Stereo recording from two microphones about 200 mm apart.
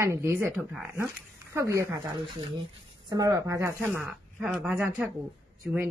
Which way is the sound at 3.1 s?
20° right (ahead or behind).